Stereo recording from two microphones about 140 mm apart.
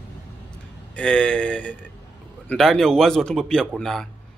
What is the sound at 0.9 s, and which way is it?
Speech, 5° left (ahead or behind).